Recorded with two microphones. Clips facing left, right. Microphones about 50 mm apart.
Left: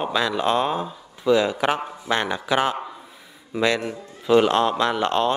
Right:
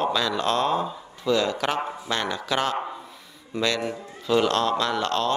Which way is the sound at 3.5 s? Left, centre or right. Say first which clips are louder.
Left 4 dB; centre.